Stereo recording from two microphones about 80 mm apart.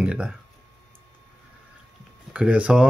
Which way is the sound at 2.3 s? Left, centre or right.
Centre.